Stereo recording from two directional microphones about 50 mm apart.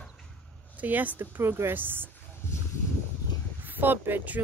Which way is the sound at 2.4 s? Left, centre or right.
Left.